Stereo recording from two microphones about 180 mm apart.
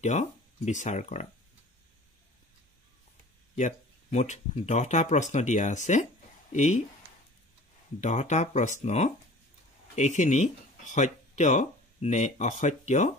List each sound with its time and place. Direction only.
0.0 s speech: 40° left (ahead or behind)
3.5 s speech: 40° left (ahead or behind)
8.0 s speech: 40° left (ahead or behind)